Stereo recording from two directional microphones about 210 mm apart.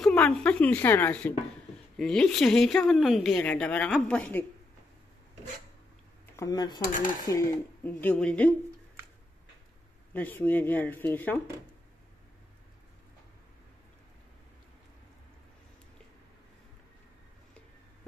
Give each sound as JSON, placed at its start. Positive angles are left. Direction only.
{"t": 0.0, "sound": "speech", "side_deg": 5}
{"t": 6.3, "sound": "speech", "side_deg": 15}
{"t": 10.1, "sound": "speech", "side_deg": 10}